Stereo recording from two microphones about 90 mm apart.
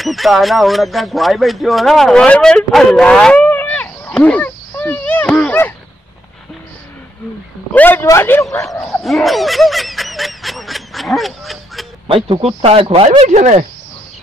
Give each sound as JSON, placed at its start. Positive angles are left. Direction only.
{"t": 0.0, "sound": "speech", "side_deg": 0}
{"t": 3.3, "sound": "a sound", "side_deg": 20}
{"t": 7.7, "sound": "speech", "side_deg": 20}
{"t": 9.0, "sound": "snicker", "side_deg": 0}
{"t": 12.3, "sound": "speech", "side_deg": -85}